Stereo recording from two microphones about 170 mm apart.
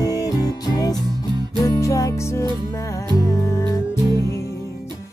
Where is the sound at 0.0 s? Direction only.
20° left (ahead or behind).